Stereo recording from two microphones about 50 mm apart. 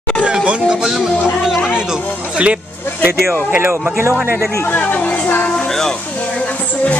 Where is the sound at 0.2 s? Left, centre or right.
Right.